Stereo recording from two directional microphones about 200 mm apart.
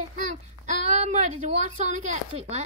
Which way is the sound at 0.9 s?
35° right (ahead or behind).